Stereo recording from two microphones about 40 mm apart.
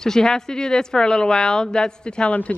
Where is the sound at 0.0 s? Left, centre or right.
Centre.